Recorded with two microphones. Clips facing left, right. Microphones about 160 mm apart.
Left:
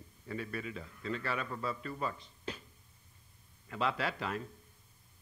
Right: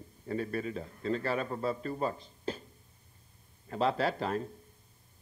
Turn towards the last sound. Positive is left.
turn(degrees=-40)  # may be behind; listen again after turning